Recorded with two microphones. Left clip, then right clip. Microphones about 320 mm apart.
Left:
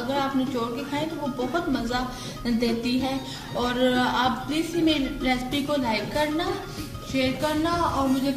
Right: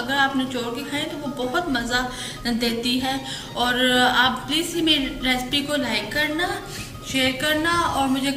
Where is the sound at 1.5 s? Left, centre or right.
Centre.